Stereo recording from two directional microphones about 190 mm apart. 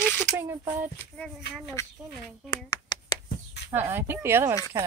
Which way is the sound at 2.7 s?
20° left (ahead or behind).